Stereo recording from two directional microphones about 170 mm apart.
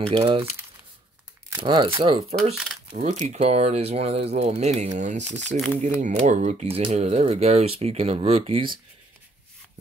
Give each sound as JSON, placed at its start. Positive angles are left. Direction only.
{"t": 0.1, "sound": "speech", "side_deg": -35}
{"t": 1.6, "sound": "speech", "side_deg": -25}
{"t": 2.5, "sound": "speech", "side_deg": 0}
{"t": 3.1, "sound": "speech", "side_deg": -45}